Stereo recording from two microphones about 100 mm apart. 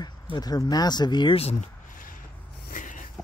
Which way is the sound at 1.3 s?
90° left.